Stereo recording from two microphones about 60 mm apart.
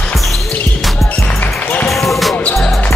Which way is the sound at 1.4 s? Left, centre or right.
Left.